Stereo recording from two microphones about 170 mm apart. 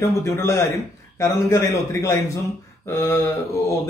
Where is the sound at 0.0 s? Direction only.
15° left (ahead or behind).